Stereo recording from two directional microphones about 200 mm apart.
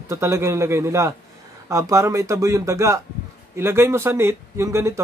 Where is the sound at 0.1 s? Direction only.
15° right (ahead or behind).